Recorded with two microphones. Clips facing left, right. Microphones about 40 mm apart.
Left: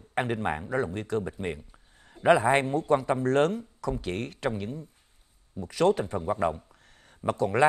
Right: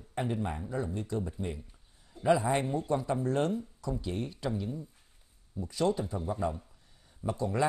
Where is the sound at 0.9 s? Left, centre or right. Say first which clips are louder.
Left 5 dB; left.